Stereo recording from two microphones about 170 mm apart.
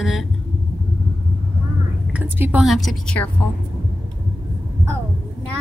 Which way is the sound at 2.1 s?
10° right (ahead or behind).